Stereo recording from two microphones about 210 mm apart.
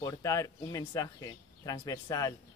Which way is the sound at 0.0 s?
15° left (ahead or behind).